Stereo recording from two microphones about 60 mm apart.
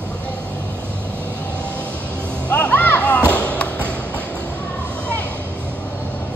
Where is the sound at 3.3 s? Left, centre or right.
Left.